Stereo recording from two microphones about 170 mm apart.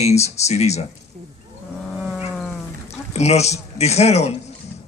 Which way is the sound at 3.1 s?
40° left (ahead or behind).